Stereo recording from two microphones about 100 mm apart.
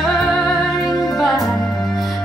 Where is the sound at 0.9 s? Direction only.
40° left (ahead or behind).